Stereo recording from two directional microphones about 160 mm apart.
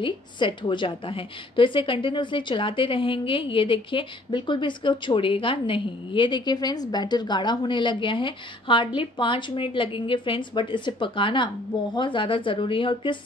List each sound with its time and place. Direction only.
0.0 s a woman's voice: 30° left (ahead or behind)